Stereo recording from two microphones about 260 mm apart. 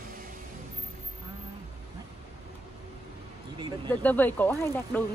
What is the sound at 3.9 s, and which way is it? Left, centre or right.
Speech, centre.